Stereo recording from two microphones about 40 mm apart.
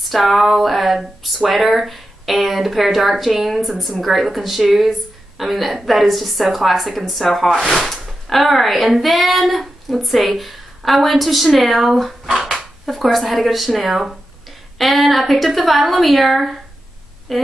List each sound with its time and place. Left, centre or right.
0.1 s speech: centre
12.3 s speech: centre
12.5 s speech: centre